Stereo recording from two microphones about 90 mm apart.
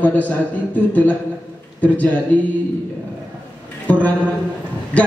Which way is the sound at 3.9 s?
15° left (ahead or behind).